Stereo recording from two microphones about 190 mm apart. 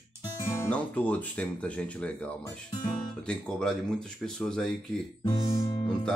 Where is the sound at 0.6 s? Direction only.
5° left (ahead or behind).